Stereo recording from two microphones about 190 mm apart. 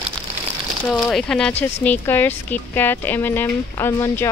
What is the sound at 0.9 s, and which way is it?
Speech, centre (ahead or behind).